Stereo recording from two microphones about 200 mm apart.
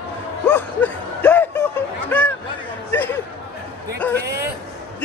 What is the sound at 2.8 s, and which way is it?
Chatter, 10° left (ahead or behind).